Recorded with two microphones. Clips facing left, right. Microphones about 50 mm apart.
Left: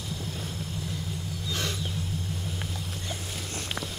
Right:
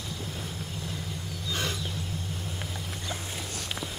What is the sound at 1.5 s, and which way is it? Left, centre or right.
Vehicle, centre.